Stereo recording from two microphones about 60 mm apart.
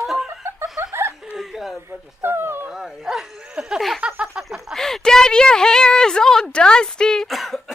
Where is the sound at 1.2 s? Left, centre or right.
Centre.